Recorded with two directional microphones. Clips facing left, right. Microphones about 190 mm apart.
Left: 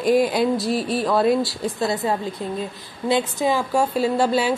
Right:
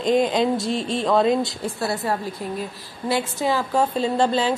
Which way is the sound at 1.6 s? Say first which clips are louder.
Left 2 dB; 20° left (ahead or behind).